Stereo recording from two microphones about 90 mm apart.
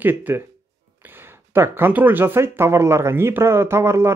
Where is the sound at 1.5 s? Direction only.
25° right (ahead or behind).